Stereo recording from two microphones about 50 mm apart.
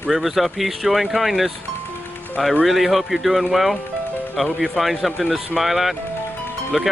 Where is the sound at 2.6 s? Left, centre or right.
Centre.